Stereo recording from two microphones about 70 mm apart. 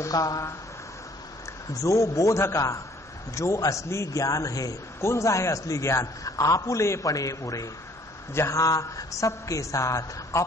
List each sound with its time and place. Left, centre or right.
0.0 s a man's voice: left
1.7 s a man's voice: left
5.0 s a man's voice: left